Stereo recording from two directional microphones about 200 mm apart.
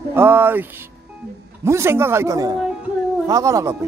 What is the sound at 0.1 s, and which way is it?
A man's voice, 10° right (ahead or behind).